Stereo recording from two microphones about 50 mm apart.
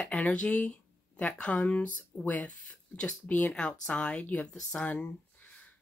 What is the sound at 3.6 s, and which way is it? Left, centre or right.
Speech, left.